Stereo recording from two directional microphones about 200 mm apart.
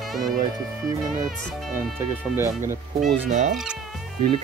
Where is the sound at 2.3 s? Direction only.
10° right (ahead or behind).